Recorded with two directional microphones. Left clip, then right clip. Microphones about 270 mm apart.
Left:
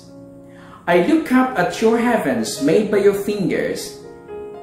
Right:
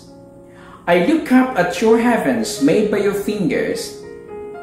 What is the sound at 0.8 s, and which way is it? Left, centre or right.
Speech, centre.